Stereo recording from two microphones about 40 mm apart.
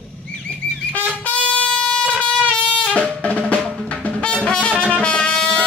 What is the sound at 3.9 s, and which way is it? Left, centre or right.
Music, left.